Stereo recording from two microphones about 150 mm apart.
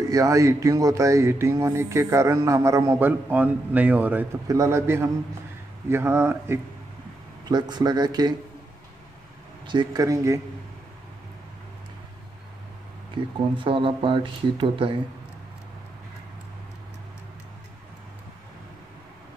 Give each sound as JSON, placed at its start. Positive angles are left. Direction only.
{"t": 0.1, "sound": "speech", "side_deg": -20}
{"t": 7.4, "sound": "speech", "side_deg": -30}
{"t": 9.7, "sound": "speech", "side_deg": -30}
{"t": 13.7, "sound": "speech", "side_deg": -35}